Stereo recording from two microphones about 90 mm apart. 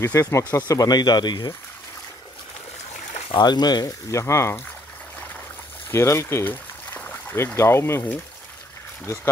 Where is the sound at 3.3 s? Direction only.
55° left (ahead or behind).